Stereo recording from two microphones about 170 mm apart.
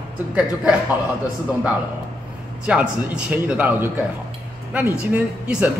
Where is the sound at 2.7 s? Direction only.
5° right (ahead or behind).